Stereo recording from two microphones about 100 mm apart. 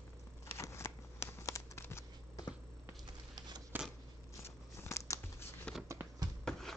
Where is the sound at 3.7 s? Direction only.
20° right (ahead or behind).